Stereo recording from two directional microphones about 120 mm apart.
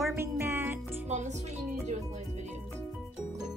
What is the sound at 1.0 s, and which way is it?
Music, 70° right (ahead or behind).